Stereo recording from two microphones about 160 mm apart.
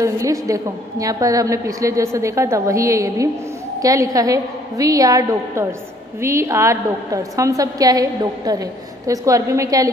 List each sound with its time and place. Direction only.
0.0 s a woman's voice: 20° right (ahead or behind)